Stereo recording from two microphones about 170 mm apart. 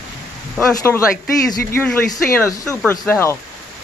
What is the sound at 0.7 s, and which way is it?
Speech, 15° left (ahead or behind).